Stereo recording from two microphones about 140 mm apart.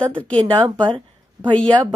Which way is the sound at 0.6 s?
35° right (ahead or behind).